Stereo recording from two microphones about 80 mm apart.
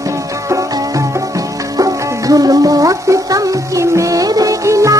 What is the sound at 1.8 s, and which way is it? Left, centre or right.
Music, right.